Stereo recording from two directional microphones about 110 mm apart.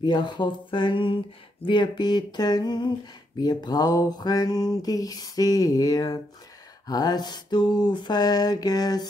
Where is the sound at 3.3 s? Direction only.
40° left (ahead or behind).